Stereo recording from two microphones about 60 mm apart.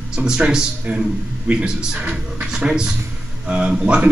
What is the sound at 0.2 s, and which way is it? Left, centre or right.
A man's voice, centre.